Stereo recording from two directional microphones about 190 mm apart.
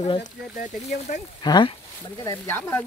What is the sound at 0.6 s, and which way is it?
Speech, 45° left (ahead or behind).